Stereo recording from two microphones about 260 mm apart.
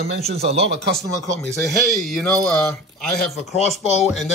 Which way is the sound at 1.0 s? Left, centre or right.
Centre.